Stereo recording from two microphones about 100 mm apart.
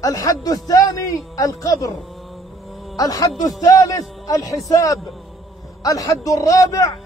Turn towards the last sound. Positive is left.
turn(degrees=35)  # may be behind; listen again after turning